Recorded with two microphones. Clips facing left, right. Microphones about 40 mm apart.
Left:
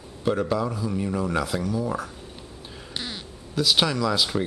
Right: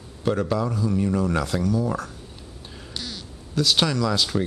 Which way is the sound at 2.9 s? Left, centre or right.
Left.